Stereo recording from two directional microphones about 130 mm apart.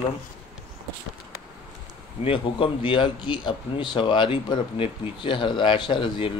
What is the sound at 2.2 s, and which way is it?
Speech, 45° left (ahead or behind).